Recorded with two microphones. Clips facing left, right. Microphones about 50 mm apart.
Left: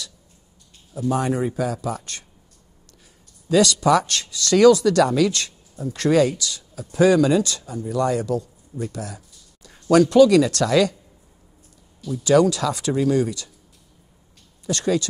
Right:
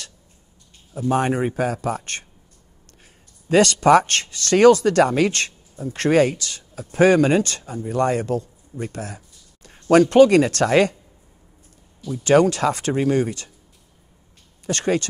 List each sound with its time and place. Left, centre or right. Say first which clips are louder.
0.9 s speech: right 2 dB; right
3.4 s speech: right 2 dB; right
12.2 s speech: right 1 dB; right
14.7 s speech: even; right